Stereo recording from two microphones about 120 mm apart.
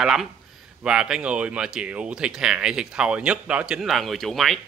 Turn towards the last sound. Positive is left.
turn(degrees=0)  # may be behind; listen again after turning